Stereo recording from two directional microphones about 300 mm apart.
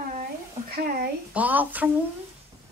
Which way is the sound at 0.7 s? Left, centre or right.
Right.